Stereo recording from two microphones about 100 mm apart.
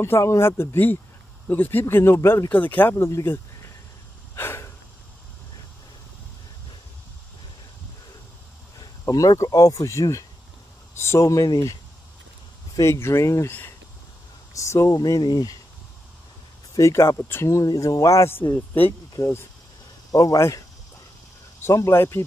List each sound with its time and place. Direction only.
0.0 s speech: 30° left (ahead or behind)
4.4 s a sound: 25° left (ahead or behind)
8.7 s speech: 35° left (ahead or behind)
12.8 s speech: 25° left (ahead or behind)
14.5 s speech: 30° left (ahead or behind)
16.7 s speech: 30° left (ahead or behind)
21.6 s speech: 30° left (ahead or behind)